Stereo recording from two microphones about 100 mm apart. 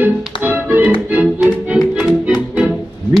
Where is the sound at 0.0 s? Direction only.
20° right (ahead or behind).